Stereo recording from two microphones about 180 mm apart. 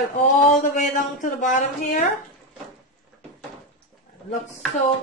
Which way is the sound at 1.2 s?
45° left (ahead or behind).